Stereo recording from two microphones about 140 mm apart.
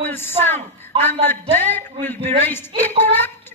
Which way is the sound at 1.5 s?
15° left (ahead or behind).